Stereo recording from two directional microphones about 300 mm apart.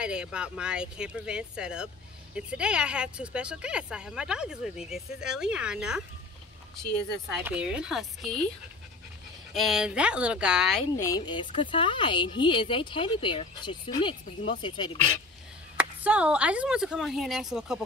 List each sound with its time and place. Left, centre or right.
0.0 s speech: centre
7.3 s speech: centre
9.5 s speech: centre
11.0 s speech: centre
15.8 s speech: centre